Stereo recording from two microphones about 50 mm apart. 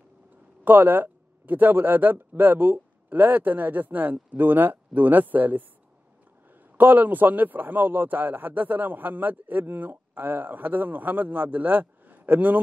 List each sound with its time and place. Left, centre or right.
0.7 s a man's voice: right